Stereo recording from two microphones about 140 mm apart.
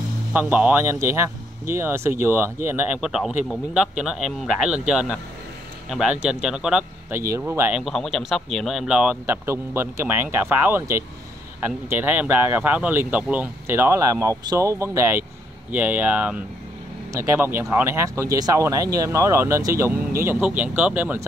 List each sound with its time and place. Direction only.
0.3 s speech: 10° right (ahead or behind)
3.0 s speech: 5° right (ahead or behind)
7.3 s speech: 20° right (ahead or behind)
7.7 s speech: centre (ahead or behind); by 19.9 s 20° right (ahead or behind)
20.2 s speech: 10° right (ahead or behind)